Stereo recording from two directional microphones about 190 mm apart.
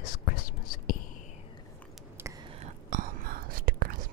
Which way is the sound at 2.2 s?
10° right (ahead or behind).